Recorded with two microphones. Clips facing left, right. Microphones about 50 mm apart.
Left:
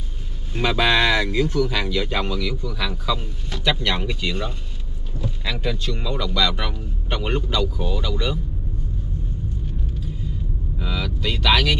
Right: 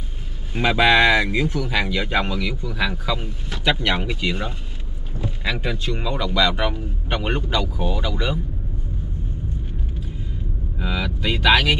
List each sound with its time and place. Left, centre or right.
0.6 s speech: centre
10.8 s speech: centre